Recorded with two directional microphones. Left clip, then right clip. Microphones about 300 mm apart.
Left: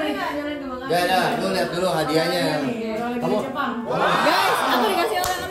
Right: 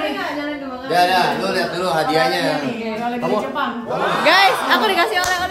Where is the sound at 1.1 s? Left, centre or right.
Centre.